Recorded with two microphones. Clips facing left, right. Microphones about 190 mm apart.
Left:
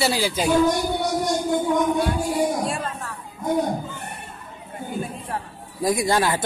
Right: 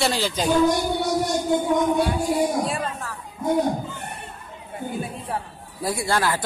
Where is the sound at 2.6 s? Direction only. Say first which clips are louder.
Right 1 dB; centre (ahead or behind).